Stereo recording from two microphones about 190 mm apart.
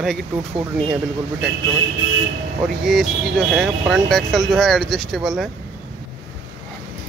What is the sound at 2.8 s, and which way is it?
Speech, centre (ahead or behind).